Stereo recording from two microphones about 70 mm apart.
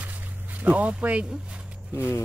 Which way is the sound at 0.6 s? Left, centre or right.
Right.